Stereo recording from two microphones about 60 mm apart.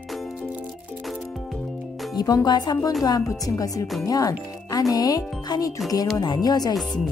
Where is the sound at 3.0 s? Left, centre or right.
Left.